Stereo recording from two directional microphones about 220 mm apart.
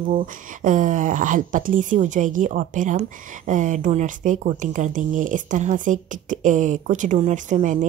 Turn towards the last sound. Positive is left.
turn(degrees=-35)  # may be behind; listen again after turning